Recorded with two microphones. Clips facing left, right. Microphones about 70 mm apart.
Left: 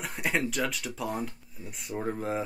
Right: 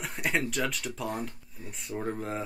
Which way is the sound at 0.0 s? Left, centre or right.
Centre.